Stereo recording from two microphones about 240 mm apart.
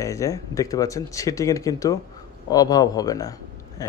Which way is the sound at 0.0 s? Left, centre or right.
Centre.